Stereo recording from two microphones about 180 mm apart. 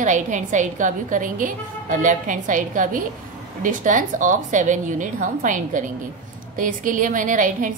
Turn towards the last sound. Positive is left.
turn(degrees=-45)  # may be behind; listen again after turning